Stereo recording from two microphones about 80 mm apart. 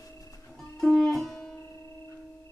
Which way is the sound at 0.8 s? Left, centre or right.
Centre.